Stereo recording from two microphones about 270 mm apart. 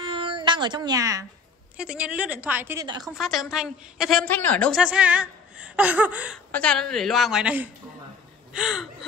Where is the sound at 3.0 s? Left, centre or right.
Centre.